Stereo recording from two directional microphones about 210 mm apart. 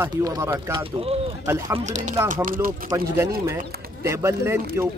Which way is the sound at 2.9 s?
15° right (ahead or behind).